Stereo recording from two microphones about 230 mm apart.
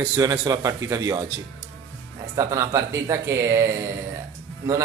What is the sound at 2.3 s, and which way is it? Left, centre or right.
Speech, centre.